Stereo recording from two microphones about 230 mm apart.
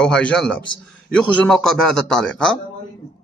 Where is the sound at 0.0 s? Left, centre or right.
Centre.